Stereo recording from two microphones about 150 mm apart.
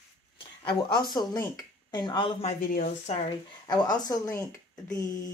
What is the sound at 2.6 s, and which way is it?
Speech, 70° left (ahead or behind).